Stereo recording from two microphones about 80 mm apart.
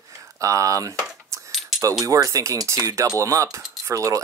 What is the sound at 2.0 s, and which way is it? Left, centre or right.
Speech, right.